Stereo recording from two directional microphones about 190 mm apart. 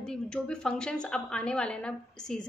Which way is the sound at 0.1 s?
5° left (ahead or behind).